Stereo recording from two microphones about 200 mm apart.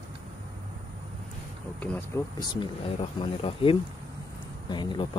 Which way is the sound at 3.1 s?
25° left (ahead or behind).